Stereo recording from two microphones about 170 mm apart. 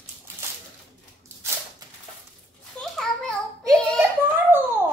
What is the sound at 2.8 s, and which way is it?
Children playing, 5° left (ahead or behind).